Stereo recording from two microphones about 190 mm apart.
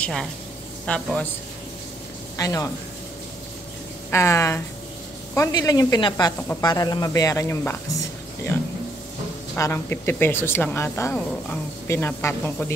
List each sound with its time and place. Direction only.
0.0 s a man's voice: 5° left (ahead or behind)
2.3 s speech: 20° left (ahead or behind)
4.1 s a woman's voice: 15° left (ahead or behind)